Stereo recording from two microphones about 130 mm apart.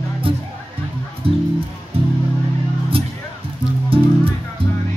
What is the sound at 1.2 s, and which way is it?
Music, 45° right (ahead or behind).